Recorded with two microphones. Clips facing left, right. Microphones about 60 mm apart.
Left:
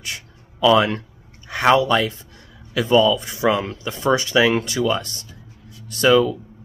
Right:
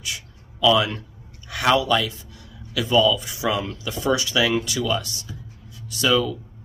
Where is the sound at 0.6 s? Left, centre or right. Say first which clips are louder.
Left 3 dB; left.